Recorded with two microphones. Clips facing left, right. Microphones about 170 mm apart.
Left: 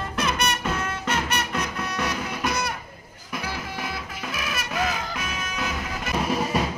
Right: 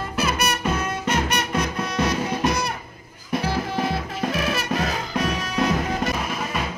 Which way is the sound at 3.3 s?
35° right (ahead or behind).